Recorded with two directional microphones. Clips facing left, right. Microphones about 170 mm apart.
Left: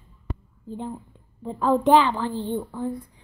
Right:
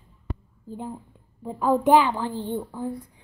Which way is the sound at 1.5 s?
10° right (ahead or behind).